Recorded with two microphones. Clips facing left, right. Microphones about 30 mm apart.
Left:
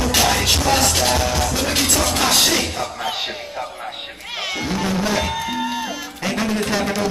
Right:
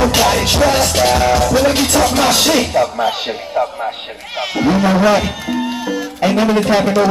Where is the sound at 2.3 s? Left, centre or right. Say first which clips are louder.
Right 5 dB; centre.